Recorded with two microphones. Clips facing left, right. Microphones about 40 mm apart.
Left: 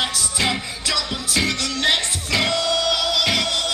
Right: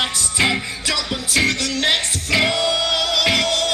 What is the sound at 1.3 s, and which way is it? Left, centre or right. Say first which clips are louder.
Music: right 3 dB; centre.